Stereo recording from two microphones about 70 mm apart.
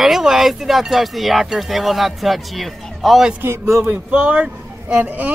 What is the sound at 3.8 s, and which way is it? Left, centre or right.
Speech, centre.